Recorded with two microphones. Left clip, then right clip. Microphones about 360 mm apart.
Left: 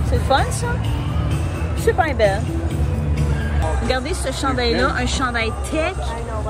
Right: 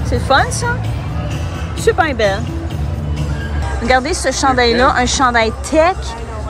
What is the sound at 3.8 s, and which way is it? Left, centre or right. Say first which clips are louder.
Speech: right 11 dB; centre.